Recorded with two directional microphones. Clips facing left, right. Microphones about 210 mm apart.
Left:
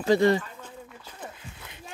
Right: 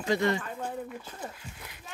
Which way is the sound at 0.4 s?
55° right (ahead or behind).